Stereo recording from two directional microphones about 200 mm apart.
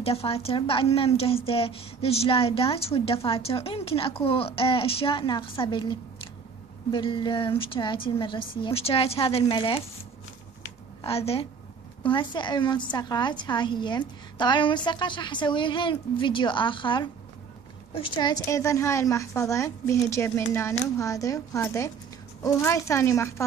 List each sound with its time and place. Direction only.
0.0 s a woman's voice: 30° left (ahead or behind)
11.0 s a woman's voice: 30° left (ahead or behind); by 23.4 s 15° left (ahead or behind)